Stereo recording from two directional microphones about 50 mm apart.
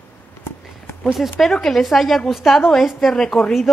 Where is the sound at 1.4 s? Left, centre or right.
Centre.